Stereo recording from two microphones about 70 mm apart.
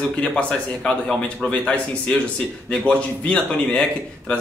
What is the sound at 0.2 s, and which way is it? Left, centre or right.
A man's voice, centre.